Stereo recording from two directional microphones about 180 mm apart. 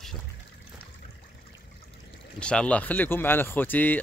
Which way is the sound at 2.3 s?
5° left (ahead or behind).